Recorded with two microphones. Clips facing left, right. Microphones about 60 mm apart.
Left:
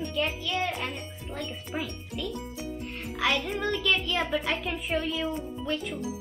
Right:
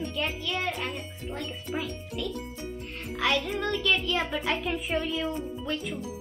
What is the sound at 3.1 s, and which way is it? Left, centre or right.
Music, centre.